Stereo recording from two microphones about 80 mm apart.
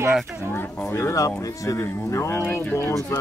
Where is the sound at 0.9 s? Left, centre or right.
Left.